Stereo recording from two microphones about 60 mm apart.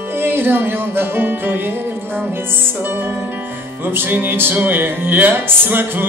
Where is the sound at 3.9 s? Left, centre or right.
Right.